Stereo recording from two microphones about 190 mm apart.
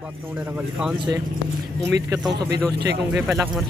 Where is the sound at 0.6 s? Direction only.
5° right (ahead or behind).